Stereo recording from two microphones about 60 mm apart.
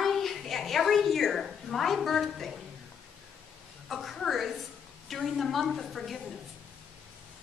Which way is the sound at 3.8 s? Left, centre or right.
Centre.